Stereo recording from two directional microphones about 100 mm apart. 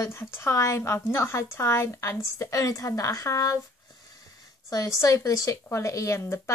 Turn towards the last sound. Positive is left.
turn(degrees=30)  # may be behind; listen again after turning